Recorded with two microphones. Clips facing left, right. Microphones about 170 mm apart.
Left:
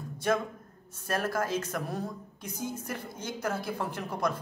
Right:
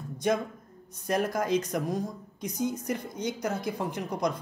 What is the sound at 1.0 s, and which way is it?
Speech, 15° right (ahead or behind).